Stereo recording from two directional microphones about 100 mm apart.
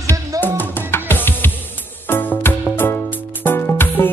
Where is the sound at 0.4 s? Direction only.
20° left (ahead or behind).